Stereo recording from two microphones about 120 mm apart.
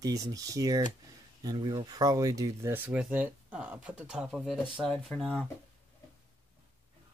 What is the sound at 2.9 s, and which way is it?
Speech, 10° right (ahead or behind).